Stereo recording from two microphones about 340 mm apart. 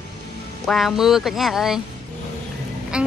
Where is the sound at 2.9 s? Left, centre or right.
Centre.